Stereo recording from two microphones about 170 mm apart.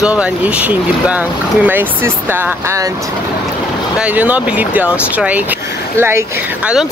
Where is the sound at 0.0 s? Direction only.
5° right (ahead or behind).